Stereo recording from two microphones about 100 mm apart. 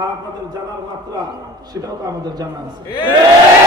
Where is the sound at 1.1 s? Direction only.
40° right (ahead or behind).